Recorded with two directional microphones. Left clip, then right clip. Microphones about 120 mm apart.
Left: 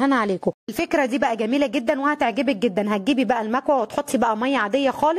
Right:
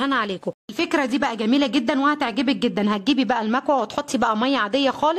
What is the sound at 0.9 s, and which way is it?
A woman's voice, 25° left (ahead or behind).